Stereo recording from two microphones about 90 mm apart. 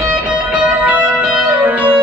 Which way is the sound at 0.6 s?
15° right (ahead or behind).